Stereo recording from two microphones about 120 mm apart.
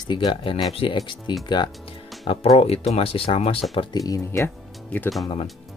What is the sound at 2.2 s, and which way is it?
Speech, 55° left (ahead or behind).